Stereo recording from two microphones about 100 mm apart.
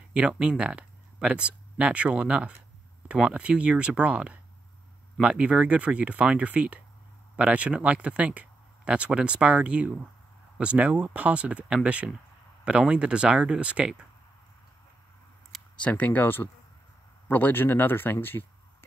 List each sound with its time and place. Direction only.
0.1 s speech: 10° right (ahead or behind)
15.8 s speech: 15° left (ahead or behind)